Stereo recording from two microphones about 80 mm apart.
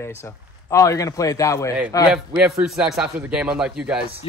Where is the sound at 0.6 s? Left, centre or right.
Left.